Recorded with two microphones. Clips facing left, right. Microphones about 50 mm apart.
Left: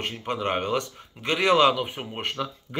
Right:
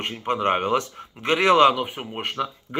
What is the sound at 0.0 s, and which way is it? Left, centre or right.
Speech, centre.